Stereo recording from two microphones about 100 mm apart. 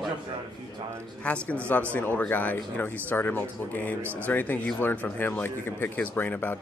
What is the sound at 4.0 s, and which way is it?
Speech, 20° right (ahead or behind).